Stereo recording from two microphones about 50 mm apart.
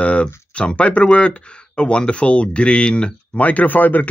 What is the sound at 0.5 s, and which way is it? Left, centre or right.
Speech, left.